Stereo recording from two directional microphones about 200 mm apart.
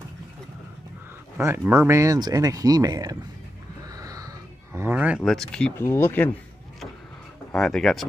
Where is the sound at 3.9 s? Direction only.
15° right (ahead or behind).